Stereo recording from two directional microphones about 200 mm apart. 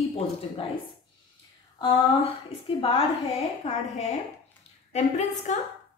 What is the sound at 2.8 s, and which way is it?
A woman's voice, 30° left (ahead or behind).